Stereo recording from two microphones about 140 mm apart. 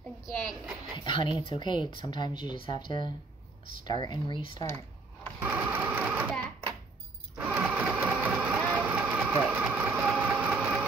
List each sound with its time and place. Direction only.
0.2 s a woman's voice: centre (ahead or behind)
0.9 s speech: 35° left (ahead or behind)
5.4 s sewing machine: 15° right (ahead or behind)
7.5 s vehicle: 15° right (ahead or behind)